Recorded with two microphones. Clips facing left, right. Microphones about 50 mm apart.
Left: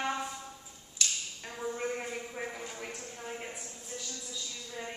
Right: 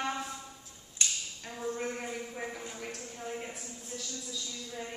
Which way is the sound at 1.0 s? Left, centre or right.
Right.